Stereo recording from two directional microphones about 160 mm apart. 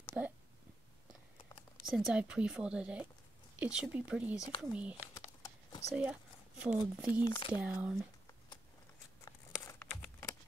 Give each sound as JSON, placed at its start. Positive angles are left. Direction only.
{"t": 0.2, "sound": "speech", "side_deg": -10}
{"t": 1.9, "sound": "speech", "side_deg": 0}
{"t": 5.1, "sound": "a sound", "side_deg": 20}
{"t": 6.6, "sound": "speech", "side_deg": -10}
{"t": 7.2, "sound": "speech", "side_deg": 25}
{"t": 7.5, "sound": "speech", "side_deg": -10}
{"t": 9.2, "sound": "a sound", "side_deg": 20}